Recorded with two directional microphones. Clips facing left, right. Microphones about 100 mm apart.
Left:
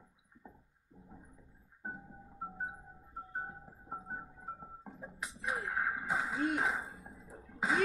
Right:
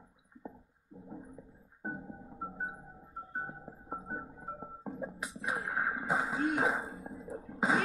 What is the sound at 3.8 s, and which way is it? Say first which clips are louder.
Keyboard: right 3 dB; 30° right (ahead or behind).